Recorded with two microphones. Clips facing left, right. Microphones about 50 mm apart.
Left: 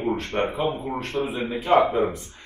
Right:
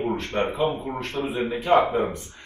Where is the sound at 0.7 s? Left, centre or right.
Left.